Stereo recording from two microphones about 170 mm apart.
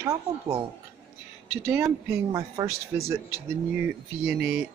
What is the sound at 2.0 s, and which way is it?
A man's voice, 20° right (ahead or behind).